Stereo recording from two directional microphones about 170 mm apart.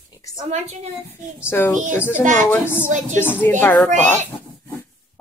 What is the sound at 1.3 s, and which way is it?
Speech, 15° left (ahead or behind).